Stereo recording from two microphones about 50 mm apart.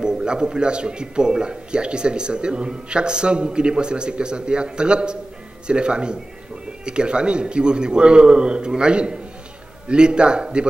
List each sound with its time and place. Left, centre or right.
0.0 s a man's voice: centre